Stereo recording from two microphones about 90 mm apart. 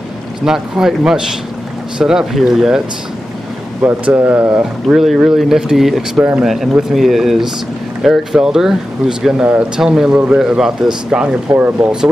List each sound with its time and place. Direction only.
0.5 s speech: 5° right (ahead or behind)
3.8 s speech: 20° right (ahead or behind)
4.8 s speech: centre (ahead or behind); by 11.9 s 20° right (ahead or behind)